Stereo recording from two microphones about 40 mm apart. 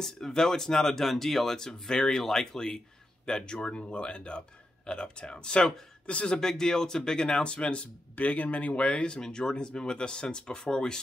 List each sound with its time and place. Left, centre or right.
0.0 s speech: centre; by 6.3 s left
6.3 s speech: centre